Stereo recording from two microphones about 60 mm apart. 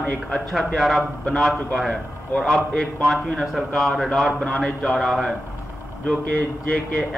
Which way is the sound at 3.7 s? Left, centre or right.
Centre.